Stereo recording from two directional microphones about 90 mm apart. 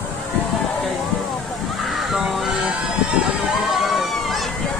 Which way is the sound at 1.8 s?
Centre (ahead or behind).